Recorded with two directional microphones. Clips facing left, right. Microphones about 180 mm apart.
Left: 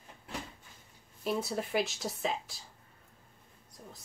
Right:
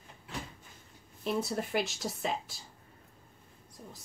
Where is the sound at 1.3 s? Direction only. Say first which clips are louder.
Right 1 dB; centre (ahead or behind).